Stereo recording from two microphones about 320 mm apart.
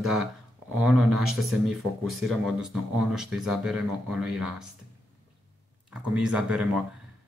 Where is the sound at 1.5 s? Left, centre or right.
Centre.